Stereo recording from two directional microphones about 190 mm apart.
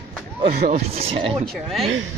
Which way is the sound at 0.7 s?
35° right (ahead or behind).